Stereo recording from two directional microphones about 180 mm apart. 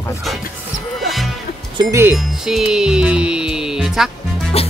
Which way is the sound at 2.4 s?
5° right (ahead or behind).